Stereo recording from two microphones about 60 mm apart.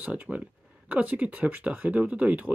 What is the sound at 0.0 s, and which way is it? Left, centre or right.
Speech, right.